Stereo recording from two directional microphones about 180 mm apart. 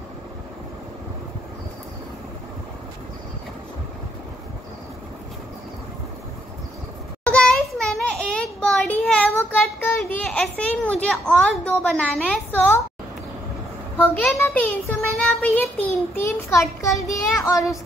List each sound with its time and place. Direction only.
7.2 s a sound: 5° left (ahead or behind)
9.3 s a child's voice: 15° left (ahead or behind)
14.4 s a child's voice: 5° left (ahead or behind)
16.2 s a child's voice: 15° left (ahead or behind)